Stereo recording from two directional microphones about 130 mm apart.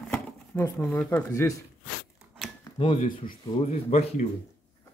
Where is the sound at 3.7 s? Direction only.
60° left (ahead or behind).